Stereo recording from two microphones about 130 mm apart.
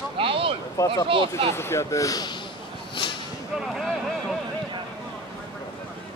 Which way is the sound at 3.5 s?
Centre (ahead or behind).